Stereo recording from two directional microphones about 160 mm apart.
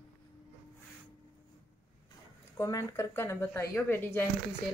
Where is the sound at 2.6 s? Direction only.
20° left (ahead or behind).